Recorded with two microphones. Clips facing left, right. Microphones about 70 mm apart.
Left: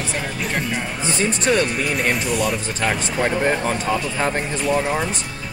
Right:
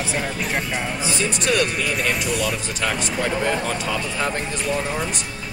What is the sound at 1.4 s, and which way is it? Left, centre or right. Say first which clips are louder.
Speech: left 2 dB; left.